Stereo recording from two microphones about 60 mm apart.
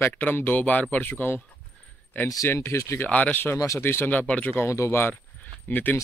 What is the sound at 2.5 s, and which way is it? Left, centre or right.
Speech, left.